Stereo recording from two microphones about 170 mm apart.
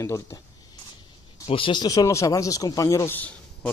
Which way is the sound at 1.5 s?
30° left (ahead or behind).